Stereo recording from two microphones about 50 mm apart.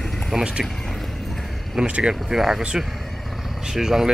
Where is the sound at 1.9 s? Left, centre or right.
Centre.